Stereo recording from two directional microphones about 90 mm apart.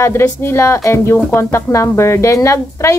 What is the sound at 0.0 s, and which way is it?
Speech, 30° left (ahead or behind).